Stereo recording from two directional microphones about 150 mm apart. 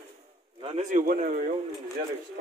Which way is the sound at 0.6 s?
50° right (ahead or behind).